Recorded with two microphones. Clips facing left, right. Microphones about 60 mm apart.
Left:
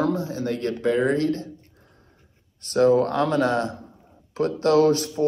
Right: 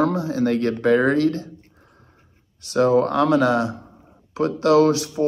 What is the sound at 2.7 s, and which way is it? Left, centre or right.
Speech, right.